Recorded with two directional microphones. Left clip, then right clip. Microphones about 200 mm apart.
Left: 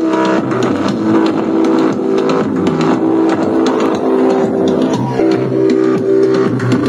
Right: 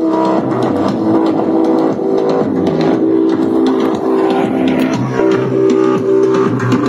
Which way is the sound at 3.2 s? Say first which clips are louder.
Even; 5° right (ahead or behind).